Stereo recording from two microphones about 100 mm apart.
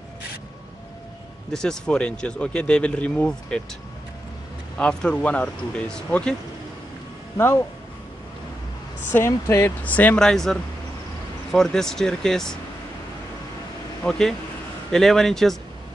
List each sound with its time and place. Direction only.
1.5 s speech: 5° left (ahead or behind)
4.7 s speech: 10° left (ahead or behind)
7.3 s speech: 25° left (ahead or behind)
9.1 s speech: 25° left (ahead or behind)
9.8 s speech: 15° left (ahead or behind)
10.2 s speech: 5° left (ahead or behind)
14.0 s speech: 5° left (ahead or behind)